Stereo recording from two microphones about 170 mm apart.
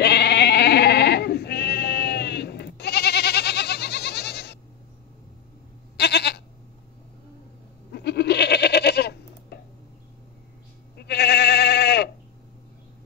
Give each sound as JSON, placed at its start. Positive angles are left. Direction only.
{"t": 0.0, "sound": "sheep", "side_deg": 80}
{"t": 5.9, "sound": "goat", "side_deg": 75}
{"t": 7.9, "sound": "goat", "side_deg": 75}
{"t": 11.0, "sound": "goat", "side_deg": 75}